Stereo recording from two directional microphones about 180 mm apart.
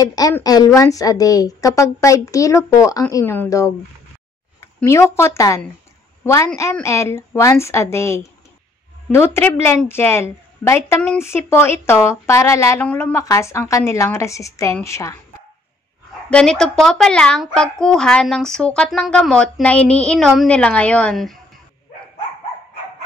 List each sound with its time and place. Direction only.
0.0 s a woman's voice: 20° left (ahead or behind)
16.3 s speech: 5° left (ahead or behind)